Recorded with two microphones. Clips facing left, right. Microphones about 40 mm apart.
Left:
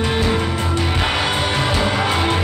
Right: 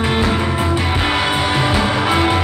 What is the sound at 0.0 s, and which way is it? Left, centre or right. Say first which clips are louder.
Music: right 2 dB; centre.